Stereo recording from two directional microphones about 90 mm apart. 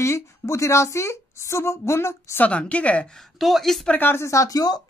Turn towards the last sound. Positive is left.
turn(degrees=45)  # may be behind; listen again after turning